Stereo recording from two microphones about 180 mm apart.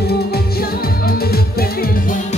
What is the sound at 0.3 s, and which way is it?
Music, 55° left (ahead or behind).